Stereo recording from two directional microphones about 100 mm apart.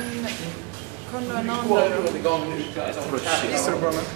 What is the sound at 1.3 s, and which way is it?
Speech, 5° left (ahead or behind).